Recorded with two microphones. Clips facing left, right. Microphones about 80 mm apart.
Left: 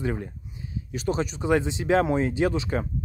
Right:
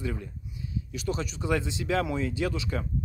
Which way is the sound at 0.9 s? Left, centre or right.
Left.